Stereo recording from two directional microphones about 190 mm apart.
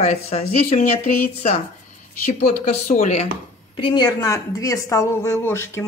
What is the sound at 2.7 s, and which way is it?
Speech, 35° left (ahead or behind).